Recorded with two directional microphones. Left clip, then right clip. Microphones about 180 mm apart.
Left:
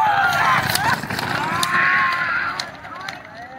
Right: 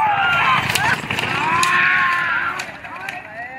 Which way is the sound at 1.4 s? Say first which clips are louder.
Right 5 dB; 50° left (ahead or behind).